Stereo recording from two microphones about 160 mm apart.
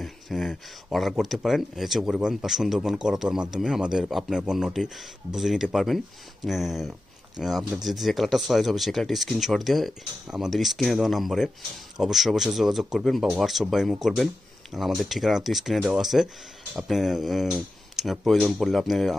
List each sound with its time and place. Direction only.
0.0 s speech: centre (ahead or behind)